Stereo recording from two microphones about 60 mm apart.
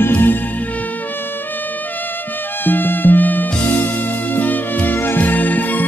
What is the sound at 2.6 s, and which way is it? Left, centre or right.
Music, left.